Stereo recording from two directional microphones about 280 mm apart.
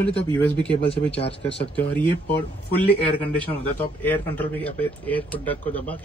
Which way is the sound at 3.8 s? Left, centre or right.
Centre.